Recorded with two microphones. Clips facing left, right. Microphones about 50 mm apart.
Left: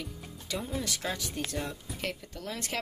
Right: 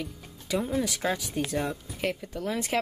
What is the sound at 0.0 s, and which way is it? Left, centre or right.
Speech, centre.